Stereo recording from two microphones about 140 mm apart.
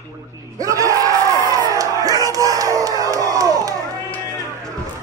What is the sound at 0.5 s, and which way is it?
Music, 25° right (ahead or behind).